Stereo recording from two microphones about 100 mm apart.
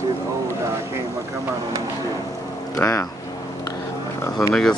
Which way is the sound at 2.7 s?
30° left (ahead or behind).